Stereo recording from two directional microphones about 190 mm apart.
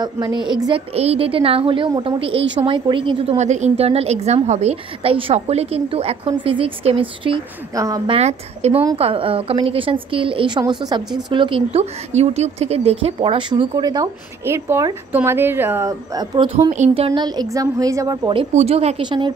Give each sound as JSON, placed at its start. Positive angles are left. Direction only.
{"t": 0.0, "sound": "a woman's voice", "side_deg": -25}
{"t": 16.7, "sound": "speech", "side_deg": -35}